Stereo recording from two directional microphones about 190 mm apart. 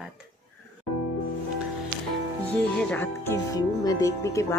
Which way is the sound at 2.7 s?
10° left (ahead or behind).